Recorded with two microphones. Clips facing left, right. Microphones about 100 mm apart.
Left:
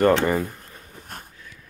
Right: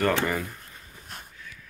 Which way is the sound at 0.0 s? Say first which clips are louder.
Left 6 dB; 30° left (ahead or behind).